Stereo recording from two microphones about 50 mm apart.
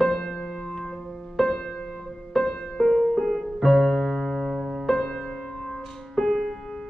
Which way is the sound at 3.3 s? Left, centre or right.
Centre.